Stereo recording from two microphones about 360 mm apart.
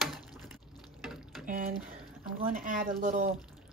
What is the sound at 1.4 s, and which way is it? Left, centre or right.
Speech, right.